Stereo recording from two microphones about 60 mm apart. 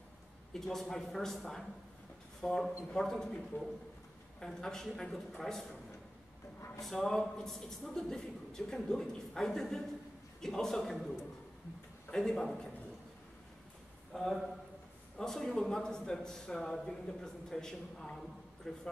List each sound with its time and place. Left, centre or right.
0.5 s a man's voice: centre
6.8 s a man's voice: centre
12.1 s a man's voice: centre
14.1 s a man's voice: centre